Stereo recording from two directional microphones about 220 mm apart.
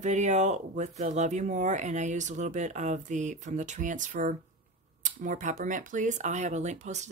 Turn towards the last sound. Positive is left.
turn(degrees=-30)  # may be behind; listen again after turning